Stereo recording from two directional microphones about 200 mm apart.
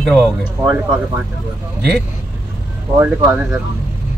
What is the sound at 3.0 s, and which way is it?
Speech, 10° right (ahead or behind).